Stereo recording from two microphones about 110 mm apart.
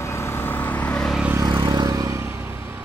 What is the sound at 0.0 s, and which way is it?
Vehicle, 25° left (ahead or behind).